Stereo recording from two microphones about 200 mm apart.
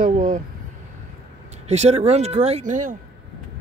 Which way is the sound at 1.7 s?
30° right (ahead or behind).